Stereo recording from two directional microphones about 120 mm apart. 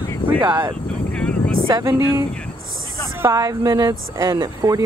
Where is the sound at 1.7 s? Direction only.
30° right (ahead or behind).